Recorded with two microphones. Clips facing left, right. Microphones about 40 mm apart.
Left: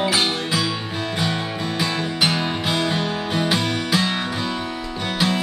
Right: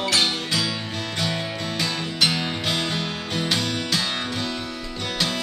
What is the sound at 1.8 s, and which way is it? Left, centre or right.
Music, centre.